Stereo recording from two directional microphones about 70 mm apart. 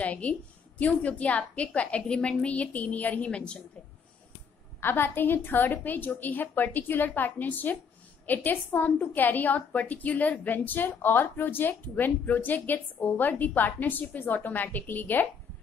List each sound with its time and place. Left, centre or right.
0.0 s speech: centre
4.7 s speech: left